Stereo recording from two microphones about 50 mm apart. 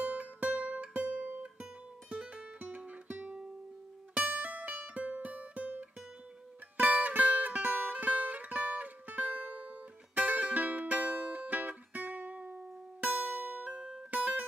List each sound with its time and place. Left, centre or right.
0.0 s music: right
2.6 s music: right